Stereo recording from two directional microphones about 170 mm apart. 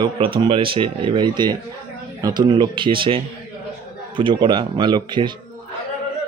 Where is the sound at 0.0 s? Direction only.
30° right (ahead or behind).